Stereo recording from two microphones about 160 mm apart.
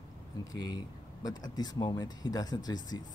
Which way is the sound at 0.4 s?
25° left (ahead or behind).